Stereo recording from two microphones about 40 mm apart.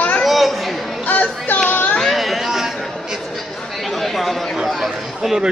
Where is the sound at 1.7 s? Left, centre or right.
Left.